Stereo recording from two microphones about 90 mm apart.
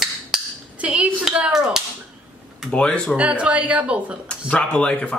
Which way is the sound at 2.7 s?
10° left (ahead or behind).